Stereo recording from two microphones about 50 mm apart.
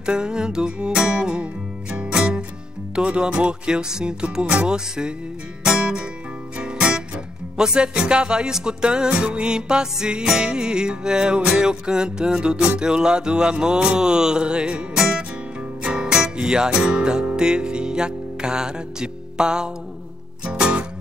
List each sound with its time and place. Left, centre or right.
0.0 s music: centre